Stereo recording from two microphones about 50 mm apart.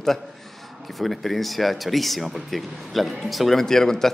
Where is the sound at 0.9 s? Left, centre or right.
Centre.